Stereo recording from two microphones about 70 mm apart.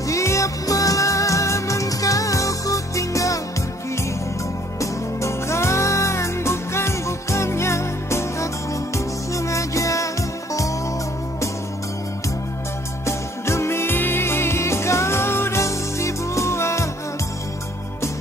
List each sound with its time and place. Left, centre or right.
0.0 s music: left
4.7 s music: left
13.0 s music: left